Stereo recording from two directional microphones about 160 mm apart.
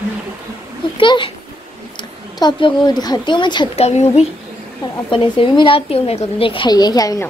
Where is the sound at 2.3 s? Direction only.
25° left (ahead or behind).